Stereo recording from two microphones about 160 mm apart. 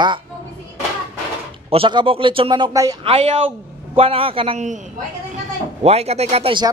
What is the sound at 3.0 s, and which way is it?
Speech, 35° right (ahead or behind).